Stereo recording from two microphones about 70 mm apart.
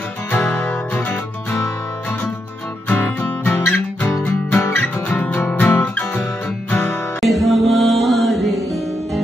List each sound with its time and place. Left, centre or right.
0.4 s music: centre
2.9 s music: left
4.6 s music: left
5.0 s music: left
7.2 s music: centre